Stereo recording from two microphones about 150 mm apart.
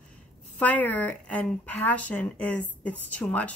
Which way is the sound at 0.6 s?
10° left (ahead or behind).